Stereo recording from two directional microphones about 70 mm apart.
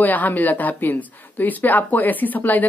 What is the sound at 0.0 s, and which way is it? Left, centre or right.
Speech, left.